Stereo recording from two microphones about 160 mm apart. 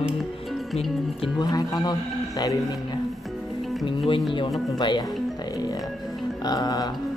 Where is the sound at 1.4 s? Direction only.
20° left (ahead or behind).